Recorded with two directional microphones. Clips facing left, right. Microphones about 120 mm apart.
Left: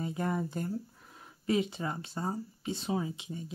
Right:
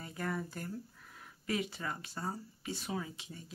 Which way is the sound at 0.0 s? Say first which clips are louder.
Left 6 dB; 20° left (ahead or behind).